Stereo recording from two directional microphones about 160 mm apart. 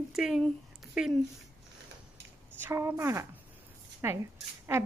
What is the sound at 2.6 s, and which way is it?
A woman's voice, 15° right (ahead or behind).